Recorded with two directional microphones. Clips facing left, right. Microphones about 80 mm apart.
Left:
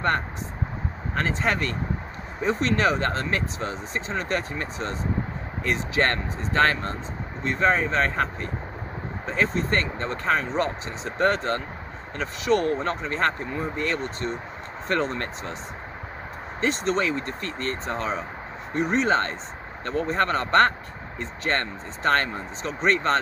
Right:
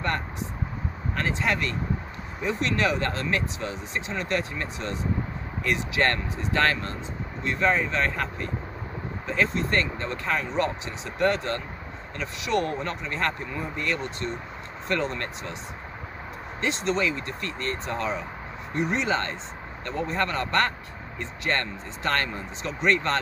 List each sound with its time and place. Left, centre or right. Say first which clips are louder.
1.1 s speech: left 2 dB; left
12.7 s speech: left 4 dB; left
16.6 s speech: left 2 dB; left